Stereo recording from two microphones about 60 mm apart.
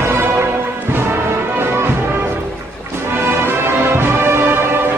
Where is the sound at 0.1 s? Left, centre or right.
Right.